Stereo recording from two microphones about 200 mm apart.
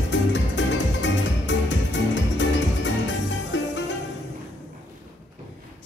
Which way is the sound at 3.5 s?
70° left (ahead or behind).